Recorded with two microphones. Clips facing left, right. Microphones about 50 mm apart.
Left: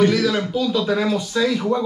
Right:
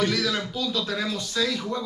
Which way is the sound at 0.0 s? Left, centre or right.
Centre.